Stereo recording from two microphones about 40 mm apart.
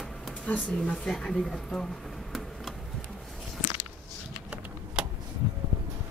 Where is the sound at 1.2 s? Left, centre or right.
Centre.